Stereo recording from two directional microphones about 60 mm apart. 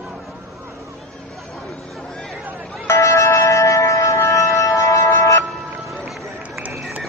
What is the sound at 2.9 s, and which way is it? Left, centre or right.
Music, left.